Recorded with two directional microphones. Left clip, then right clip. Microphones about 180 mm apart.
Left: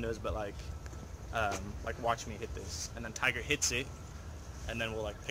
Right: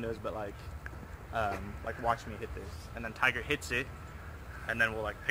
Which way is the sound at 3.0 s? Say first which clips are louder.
Right 3 dB; 20° right (ahead or behind).